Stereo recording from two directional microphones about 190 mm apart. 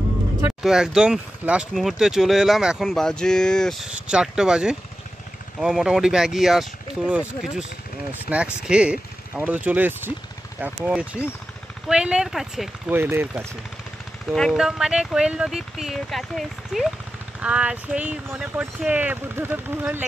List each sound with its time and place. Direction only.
0.6 s speech: 5° right (ahead or behind)
14.3 s speech: centre (ahead or behind)